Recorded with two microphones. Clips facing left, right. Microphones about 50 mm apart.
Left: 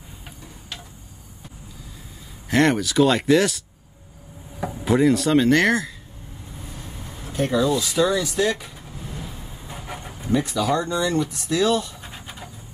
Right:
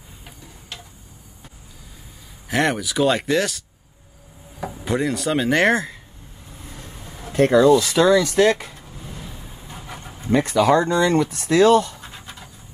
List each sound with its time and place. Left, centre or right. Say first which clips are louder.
2.4 s speech: left 2 dB; centre
5.5 s speech: right 1 dB; right
7.3 s speech: right 7 dB; right
9.2 s vehicle: left 1 dB; centre
10.3 s speech: right 5 dB; right